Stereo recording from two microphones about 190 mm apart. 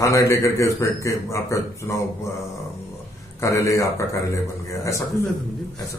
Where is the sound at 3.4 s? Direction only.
15° left (ahead or behind).